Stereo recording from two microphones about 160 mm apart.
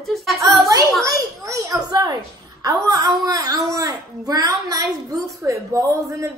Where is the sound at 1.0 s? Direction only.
20° right (ahead or behind).